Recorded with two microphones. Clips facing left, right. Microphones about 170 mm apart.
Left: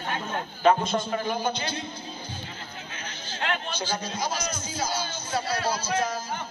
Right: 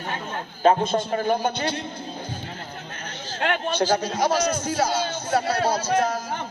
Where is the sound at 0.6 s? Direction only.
40° right (ahead or behind).